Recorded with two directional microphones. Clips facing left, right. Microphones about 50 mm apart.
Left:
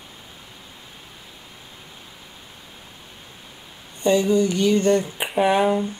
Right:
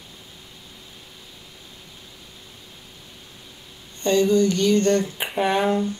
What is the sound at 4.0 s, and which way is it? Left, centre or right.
Speech, centre.